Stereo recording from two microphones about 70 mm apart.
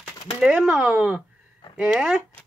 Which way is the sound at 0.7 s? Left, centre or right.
Right.